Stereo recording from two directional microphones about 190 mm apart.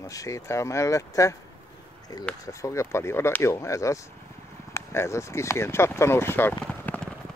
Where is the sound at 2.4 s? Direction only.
15° left (ahead or behind).